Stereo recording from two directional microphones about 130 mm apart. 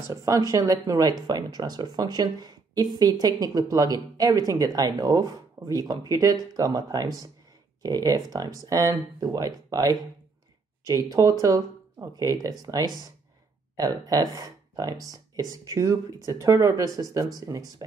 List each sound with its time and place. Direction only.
0.1 s speech: 25° right (ahead or behind)